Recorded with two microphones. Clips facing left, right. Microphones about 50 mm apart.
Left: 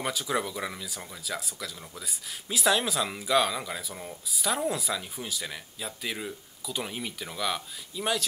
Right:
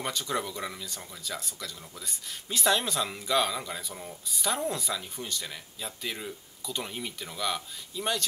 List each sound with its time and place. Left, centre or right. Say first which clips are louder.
0.0 s speech: left 2 dB; centre